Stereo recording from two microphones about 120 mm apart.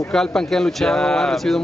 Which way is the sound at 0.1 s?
5° left (ahead or behind).